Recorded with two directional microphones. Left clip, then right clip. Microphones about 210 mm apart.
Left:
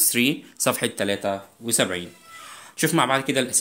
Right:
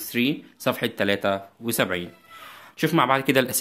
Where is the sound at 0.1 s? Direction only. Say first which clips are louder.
Right 2 dB; 10° left (ahead or behind).